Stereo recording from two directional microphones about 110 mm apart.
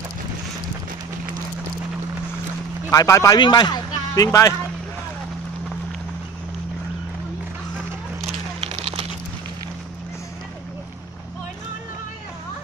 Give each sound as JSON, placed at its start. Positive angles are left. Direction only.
{"t": 2.9, "sound": "speech", "side_deg": 30}
{"t": 3.3, "sound": "a man's voice", "side_deg": 40}
{"t": 8.5, "sound": "a sound", "side_deg": -65}